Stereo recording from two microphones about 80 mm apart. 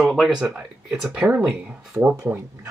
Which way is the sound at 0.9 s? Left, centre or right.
Centre.